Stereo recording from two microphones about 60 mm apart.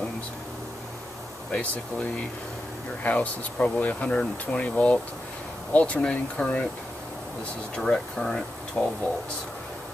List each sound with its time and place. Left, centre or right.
3.0 s speech: left
5.9 s speech: centre
7.8 s speech: centre